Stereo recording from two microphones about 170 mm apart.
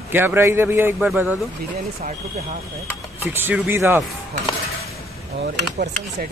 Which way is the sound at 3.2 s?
10° right (ahead or behind).